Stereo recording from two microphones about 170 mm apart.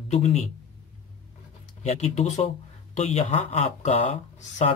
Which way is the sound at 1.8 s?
40° left (ahead or behind).